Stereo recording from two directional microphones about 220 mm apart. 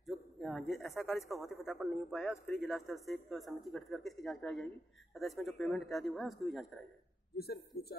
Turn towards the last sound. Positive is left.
turn(degrees=45)  # may be behind; listen again after turning